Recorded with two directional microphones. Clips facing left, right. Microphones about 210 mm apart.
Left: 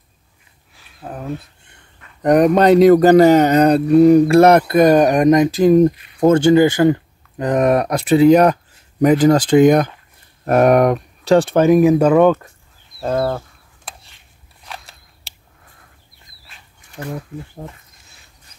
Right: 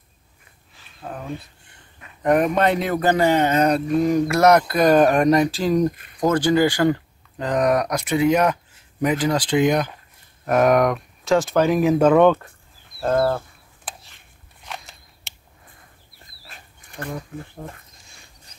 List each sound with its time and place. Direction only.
0.7 s a sound: 5° left (ahead or behind)
2.2 s speech: 40° left (ahead or behind)
10.4 s speech: 35° left (ahead or behind)
11.6 s speech: 15° left (ahead or behind)
12.1 s speech: 5° left (ahead or behind)
14.6 s biting: centre (ahead or behind)
17.0 s speech: 10° left (ahead or behind)